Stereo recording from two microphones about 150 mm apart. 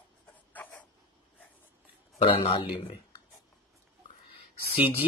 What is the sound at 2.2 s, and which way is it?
Speech, 40° left (ahead or behind).